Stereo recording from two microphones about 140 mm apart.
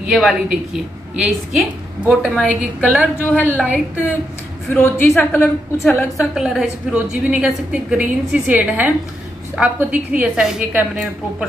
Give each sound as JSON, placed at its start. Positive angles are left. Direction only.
{"t": 0.1, "sound": "a woman's voice", "side_deg": -5}
{"t": 3.2, "sound": "a woman's voice", "side_deg": 10}
{"t": 3.6, "sound": "a woman's voice", "side_deg": -10}
{"t": 4.6, "sound": "a woman's voice", "side_deg": 15}
{"t": 6.3, "sound": "a woman's voice", "side_deg": -5}